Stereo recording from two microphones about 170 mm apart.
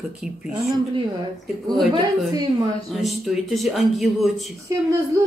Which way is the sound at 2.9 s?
Centre (ahead or behind).